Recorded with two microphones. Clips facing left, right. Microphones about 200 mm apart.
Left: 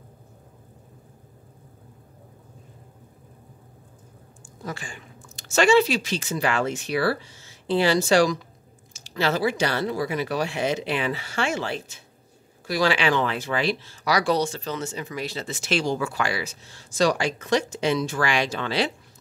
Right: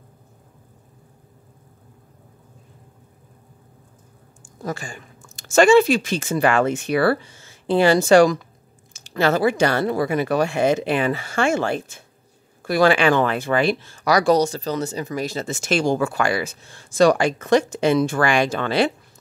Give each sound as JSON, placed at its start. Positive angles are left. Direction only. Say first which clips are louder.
{"t": 4.6, "sound": "speech", "louder": "right 6 dB", "side_deg": -45}